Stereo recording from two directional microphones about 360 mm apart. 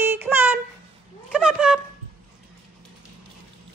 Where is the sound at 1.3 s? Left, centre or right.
Centre.